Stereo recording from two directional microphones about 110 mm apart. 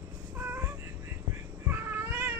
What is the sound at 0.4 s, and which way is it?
Music, 20° right (ahead or behind).